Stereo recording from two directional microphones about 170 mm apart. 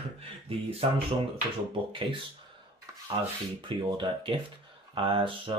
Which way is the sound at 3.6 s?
30° right (ahead or behind).